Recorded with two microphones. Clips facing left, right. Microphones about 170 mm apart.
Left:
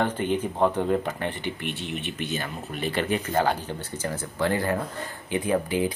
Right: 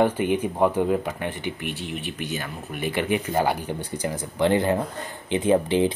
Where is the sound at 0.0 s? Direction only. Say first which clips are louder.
Right 4 dB; 10° right (ahead or behind).